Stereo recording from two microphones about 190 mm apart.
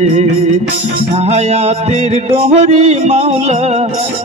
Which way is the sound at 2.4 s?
35° right (ahead or behind).